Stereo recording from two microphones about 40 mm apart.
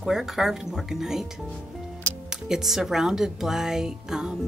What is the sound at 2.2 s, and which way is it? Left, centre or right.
Speech, centre.